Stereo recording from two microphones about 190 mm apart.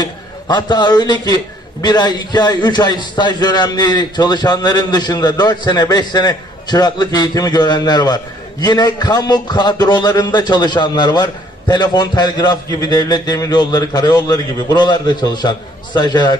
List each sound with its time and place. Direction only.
0.0 s a man's voice: 20° left (ahead or behind)